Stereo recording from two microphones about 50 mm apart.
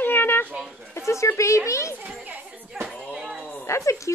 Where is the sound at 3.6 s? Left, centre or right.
Left.